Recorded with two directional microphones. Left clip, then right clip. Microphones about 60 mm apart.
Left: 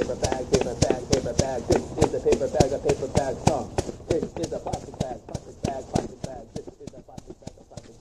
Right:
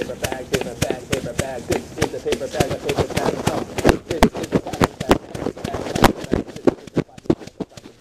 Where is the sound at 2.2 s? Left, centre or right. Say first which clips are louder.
Even; left.